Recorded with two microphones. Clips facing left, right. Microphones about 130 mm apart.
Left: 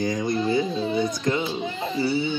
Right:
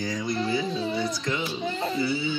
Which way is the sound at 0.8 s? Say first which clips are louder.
Left 4 dB; 20° left (ahead or behind).